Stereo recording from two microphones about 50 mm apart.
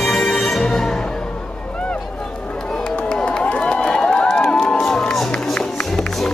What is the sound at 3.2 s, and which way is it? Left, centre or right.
Run, left.